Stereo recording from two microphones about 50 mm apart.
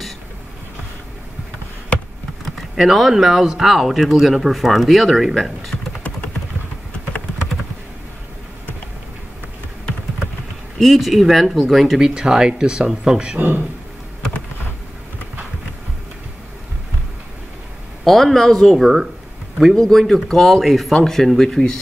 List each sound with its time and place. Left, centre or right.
2.4 s speech: centre
10.8 s speech: centre
12.1 s speech: centre
18.0 s a man's voice: centre
18.7 s speech: centre
19.7 s speech: centre